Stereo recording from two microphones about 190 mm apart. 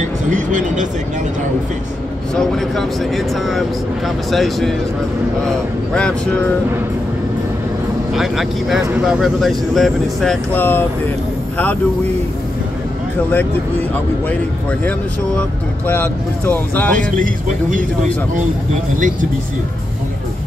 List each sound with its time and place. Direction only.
0.3 s speech: 40° right (ahead or behind)
2.3 s speech: centre (ahead or behind)
5.9 s speech: 5° left (ahead or behind)
8.1 s speech: centre (ahead or behind)
15.9 s speech: 10° left (ahead or behind)
16.9 s speech: 45° right (ahead or behind)